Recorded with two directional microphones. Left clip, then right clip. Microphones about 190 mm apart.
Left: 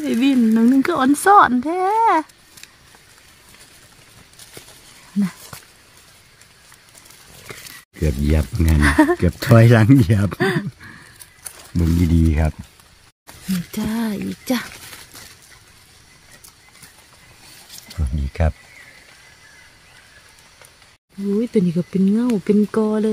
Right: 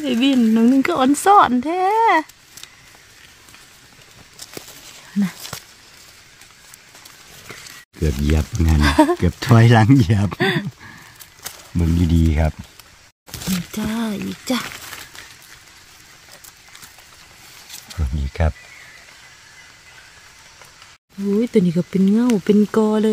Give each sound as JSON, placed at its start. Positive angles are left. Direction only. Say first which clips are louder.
{"t": 0.0, "sound": "speech", "louder": "even", "side_deg": 0}
{"t": 8.0, "sound": "speech", "louder": "even", "side_deg": -5}
{"t": 13.7, "sound": "speech", "louder": "left 3 dB", "side_deg": 20}
{"t": 17.9, "sound": "speech", "louder": "even", "side_deg": 0}
{"t": 21.4, "sound": "speech", "louder": "right 2 dB", "side_deg": -35}